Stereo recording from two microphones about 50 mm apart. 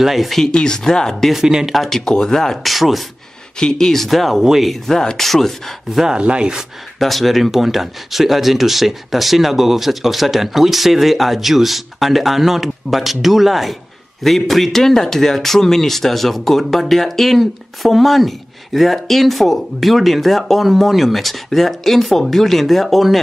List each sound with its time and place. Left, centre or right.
0.0 s a man's voice: centre
0.5 s speech: centre
1.3 s speech: centre
1.8 s speech: centre
3.5 s speech: centre
4.4 s speech: centre
4.6 s a man's voice: centre
5.9 s speech: centre
7.0 s a man's voice: centre